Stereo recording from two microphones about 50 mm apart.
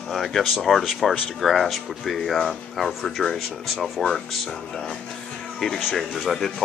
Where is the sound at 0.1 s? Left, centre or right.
Centre.